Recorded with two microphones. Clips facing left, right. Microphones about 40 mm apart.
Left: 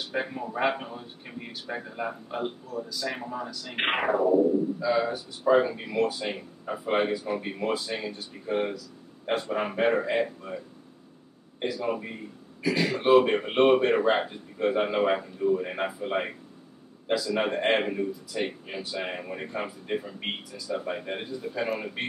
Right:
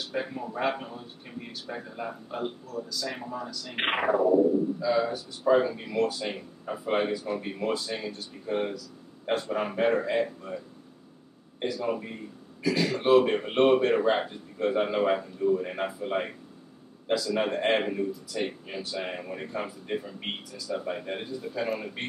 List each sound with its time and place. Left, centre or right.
0.0 s a man's voice: left
11.6 s speech: centre